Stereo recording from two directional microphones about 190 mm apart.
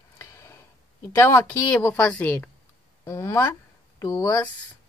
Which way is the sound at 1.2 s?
10° left (ahead or behind).